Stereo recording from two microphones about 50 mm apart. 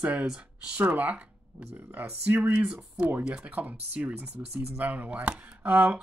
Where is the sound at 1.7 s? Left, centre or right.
Right.